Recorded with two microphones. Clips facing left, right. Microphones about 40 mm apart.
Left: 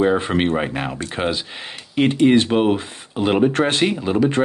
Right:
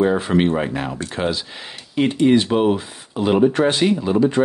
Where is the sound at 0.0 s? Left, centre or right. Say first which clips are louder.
Right 1 dB; centre.